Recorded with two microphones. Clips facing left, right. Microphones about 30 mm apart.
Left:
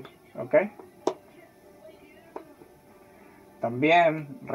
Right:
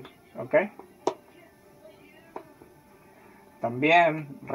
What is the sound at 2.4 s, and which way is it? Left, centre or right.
Music, centre.